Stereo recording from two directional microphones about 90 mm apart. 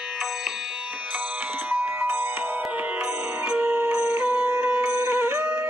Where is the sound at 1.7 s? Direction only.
20° right (ahead or behind).